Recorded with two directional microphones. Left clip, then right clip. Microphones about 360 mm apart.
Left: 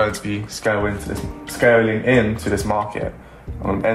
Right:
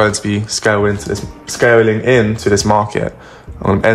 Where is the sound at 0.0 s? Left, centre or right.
Right.